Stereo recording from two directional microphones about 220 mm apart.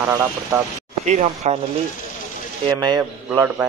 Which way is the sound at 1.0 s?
30° right (ahead or behind).